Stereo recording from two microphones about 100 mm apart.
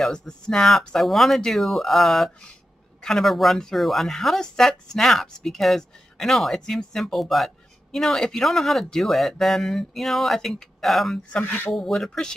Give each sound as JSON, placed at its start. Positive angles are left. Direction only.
{"t": 0.0, "sound": "speech", "side_deg": 5}
{"t": 11.3, "sound": "speech", "side_deg": 15}
{"t": 11.7, "sound": "speech", "side_deg": 5}